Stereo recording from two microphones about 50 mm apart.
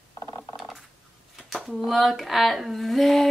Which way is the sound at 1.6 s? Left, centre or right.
Centre.